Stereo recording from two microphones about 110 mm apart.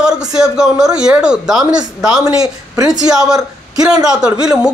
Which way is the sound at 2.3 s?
35° right (ahead or behind).